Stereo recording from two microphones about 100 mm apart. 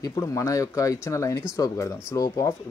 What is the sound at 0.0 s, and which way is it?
Speech, 35° left (ahead or behind).